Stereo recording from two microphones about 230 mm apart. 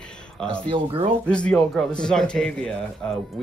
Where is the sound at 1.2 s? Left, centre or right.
Centre.